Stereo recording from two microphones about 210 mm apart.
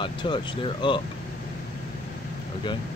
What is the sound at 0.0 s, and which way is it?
Speech, 20° left (ahead or behind).